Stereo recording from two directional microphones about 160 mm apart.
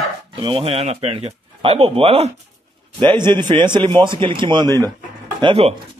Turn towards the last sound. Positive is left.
turn(degrees=-35)  # may be behind; listen again after turning